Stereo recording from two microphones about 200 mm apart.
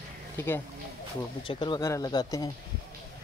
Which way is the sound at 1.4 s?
25° left (ahead or behind).